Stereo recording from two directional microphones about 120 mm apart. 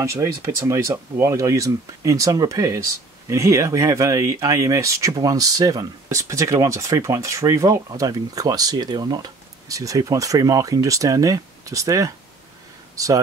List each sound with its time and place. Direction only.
0.0 s speech: 25° right (ahead or behind)